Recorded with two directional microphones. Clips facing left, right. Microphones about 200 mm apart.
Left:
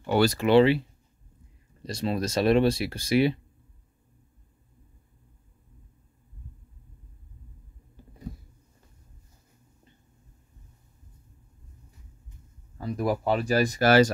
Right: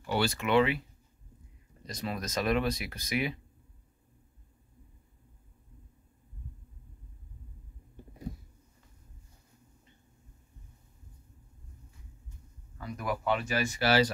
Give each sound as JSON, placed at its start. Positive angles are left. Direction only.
{"t": 0.0, "sound": "speech", "side_deg": 40}
{"t": 12.7, "sound": "speech", "side_deg": 35}